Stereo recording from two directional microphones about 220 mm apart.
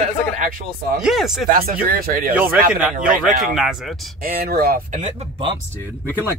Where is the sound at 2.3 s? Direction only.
5° right (ahead or behind).